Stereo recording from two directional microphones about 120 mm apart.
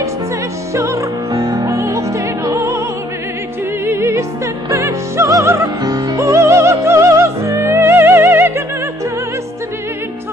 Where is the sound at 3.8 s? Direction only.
20° right (ahead or behind).